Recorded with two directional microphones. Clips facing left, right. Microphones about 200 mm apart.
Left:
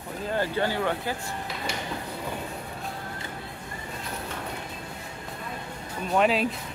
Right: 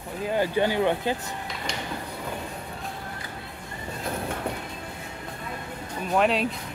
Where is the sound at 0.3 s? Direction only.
15° right (ahead or behind).